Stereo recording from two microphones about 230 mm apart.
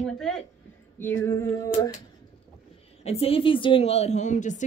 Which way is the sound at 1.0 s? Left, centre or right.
Centre.